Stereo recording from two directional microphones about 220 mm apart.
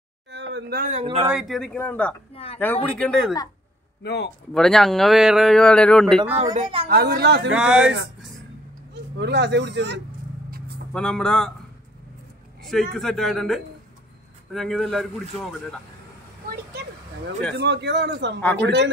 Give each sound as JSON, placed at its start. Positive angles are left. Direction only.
{"t": 0.3, "sound": "a sound", "side_deg": -50}
{"t": 0.9, "sound": "a woman's voice", "side_deg": -25}
{"t": 1.3, "sound": "a man's voice", "side_deg": 0}
{"t": 2.3, "sound": "speech", "side_deg": 25}
{"t": 2.6, "sound": "a man's voice", "side_deg": 5}
{"t": 4.0, "sound": "speech", "side_deg": 50}
{"t": 4.6, "sound": "a man's voice", "side_deg": 0}
{"t": 6.5, "sound": "a woman's voice", "side_deg": -25}
{"t": 6.9, "sound": "speech", "side_deg": -45}
{"t": 7.5, "sound": "a man's voice", "side_deg": -5}
{"t": 9.2, "sound": "speech", "side_deg": -50}
{"t": 10.9, "sound": "a man's voice", "side_deg": 5}
{"t": 12.6, "sound": "a man's voice", "side_deg": 0}
{"t": 17.6, "sound": "speech", "side_deg": -50}